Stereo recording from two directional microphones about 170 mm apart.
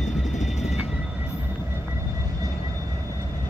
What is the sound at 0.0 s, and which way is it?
Train, 45° left (ahead or behind).